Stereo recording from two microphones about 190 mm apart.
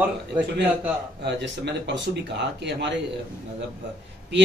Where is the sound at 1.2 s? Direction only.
65° right (ahead or behind).